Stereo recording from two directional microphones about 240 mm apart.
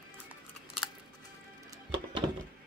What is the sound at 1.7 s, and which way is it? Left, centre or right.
Music, centre.